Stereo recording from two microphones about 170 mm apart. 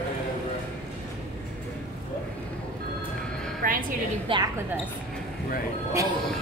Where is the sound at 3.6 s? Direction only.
50° right (ahead or behind).